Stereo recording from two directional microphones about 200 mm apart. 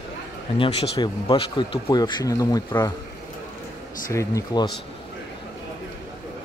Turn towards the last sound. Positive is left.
turn(degrees=20)  # may be behind; listen again after turning